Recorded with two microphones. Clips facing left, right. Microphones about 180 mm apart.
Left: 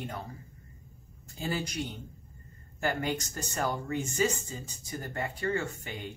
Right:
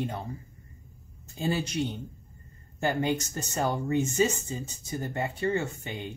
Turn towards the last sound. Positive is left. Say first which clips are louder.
# right 3 dB
turn(degrees=-20)  # may be behind; listen again after turning